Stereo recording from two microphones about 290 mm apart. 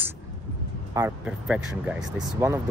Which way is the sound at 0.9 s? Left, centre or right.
Centre.